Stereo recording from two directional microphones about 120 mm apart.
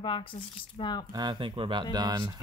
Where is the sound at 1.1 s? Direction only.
35° right (ahead or behind).